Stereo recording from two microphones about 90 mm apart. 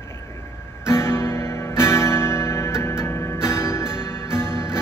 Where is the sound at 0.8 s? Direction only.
30° left (ahead or behind).